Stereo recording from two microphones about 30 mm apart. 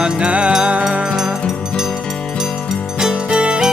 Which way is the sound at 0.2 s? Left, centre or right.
Right.